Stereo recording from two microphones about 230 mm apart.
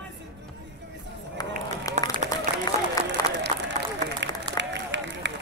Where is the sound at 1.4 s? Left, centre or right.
Centre.